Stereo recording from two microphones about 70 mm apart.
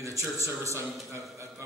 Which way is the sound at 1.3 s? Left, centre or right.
Right.